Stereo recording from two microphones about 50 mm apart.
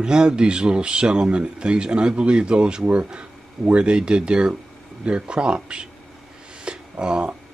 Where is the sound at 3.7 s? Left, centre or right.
Centre.